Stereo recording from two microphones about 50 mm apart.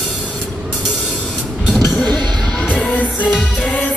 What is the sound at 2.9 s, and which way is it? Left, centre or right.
Music, left.